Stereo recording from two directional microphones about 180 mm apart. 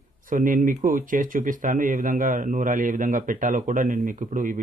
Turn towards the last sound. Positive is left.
turn(degrees=-50)  # may be behind; listen again after turning